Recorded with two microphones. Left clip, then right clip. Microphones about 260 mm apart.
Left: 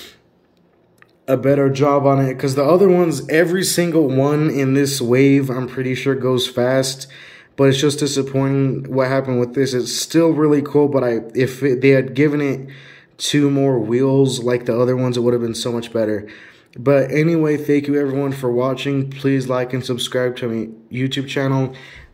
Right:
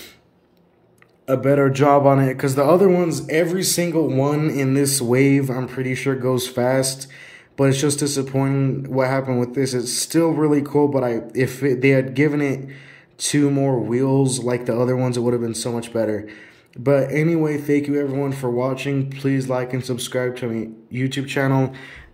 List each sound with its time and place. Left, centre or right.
1.2 s speech: centre
3.4 s speech: left
3.8 s speech: centre